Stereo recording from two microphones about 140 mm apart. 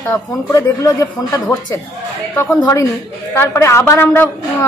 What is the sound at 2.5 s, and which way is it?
A woman's voice, 25° left (ahead or behind).